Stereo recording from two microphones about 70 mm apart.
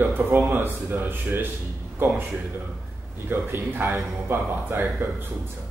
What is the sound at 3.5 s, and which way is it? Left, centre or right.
A man's voice, right.